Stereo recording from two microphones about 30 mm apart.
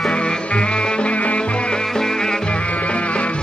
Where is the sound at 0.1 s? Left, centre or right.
Left.